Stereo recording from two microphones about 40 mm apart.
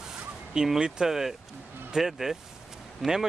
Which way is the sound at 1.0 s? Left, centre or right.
Centre.